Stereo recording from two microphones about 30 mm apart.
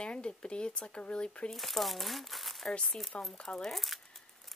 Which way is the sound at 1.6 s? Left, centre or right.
Centre.